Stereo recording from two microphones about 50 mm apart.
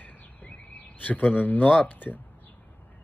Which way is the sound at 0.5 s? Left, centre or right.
Left.